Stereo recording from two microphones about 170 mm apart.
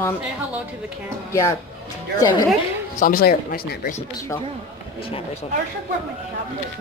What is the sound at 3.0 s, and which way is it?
Speech, 60° left (ahead or behind).